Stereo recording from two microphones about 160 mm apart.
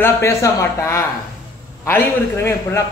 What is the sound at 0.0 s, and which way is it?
A man's voice, 20° left (ahead or behind).